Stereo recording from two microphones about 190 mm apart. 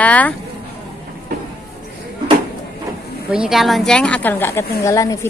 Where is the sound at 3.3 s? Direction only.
5° right (ahead or behind).